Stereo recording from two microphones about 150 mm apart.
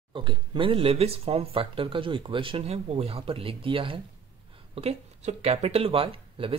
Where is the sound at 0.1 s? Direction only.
30° right (ahead or behind).